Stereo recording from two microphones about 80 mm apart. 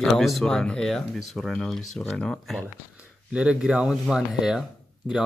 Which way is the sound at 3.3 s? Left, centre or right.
Centre.